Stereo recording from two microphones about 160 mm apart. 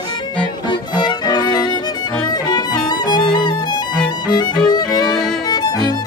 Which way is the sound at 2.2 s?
25° left (ahead or behind).